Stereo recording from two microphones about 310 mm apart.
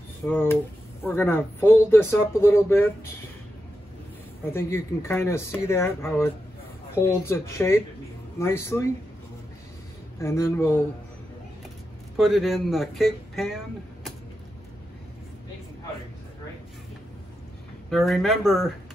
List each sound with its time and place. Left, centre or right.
0.3 s speech: centre
4.6 s speech: centre
10.2 s speech: centre
12.2 s speech: centre
17.8 s speech: centre